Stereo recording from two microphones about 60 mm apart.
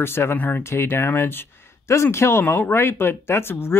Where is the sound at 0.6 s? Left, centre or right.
Left.